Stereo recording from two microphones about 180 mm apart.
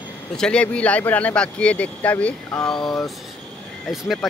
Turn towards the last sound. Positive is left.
turn(degrees=0)  # may be behind; listen again after turning